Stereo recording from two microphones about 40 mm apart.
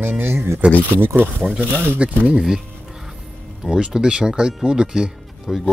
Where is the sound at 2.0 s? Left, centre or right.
Right.